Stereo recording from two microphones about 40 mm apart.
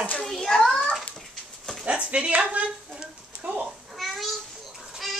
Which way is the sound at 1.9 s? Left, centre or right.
Right.